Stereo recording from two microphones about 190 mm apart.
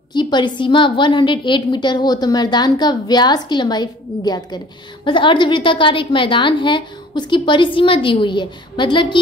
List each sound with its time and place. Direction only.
0.1 s a woman's voice: 25° left (ahead or behind)